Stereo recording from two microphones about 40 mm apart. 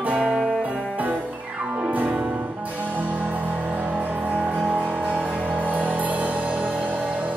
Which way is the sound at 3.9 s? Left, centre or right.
Right.